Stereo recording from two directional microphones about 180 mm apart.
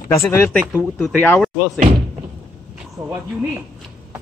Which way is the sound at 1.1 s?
5° left (ahead or behind).